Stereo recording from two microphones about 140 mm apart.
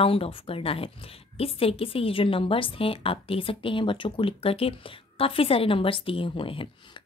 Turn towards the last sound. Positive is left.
turn(degrees=40)  # may be behind; listen again after turning